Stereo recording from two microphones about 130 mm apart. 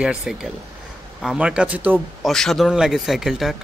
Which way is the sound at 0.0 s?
5° right (ahead or behind).